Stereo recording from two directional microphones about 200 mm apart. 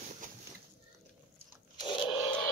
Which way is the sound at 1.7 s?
20° left (ahead or behind).